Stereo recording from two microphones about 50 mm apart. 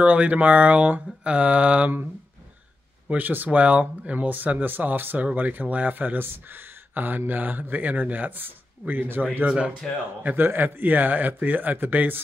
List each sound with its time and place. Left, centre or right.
0.0 s speech: right
3.2 s speech: right
3.4 s speech: right
9.8 s speech: centre
10.3 s speech: right